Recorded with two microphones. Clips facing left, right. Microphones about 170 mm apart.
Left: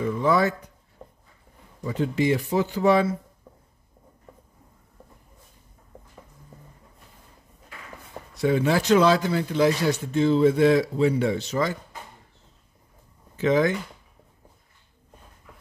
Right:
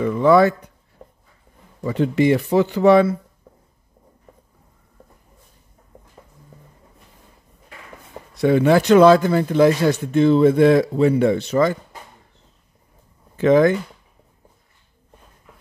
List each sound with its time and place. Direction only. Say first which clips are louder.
0.0 s a sound: right 7 dB; 80° right
1.8 s speech: right 6 dB; 70° right (ahead or behind)
8.4 s a man's voice: right 7 dB; 65° right (ahead or behind)
13.4 s a man's voice: right 7 dB; 55° right (ahead or behind)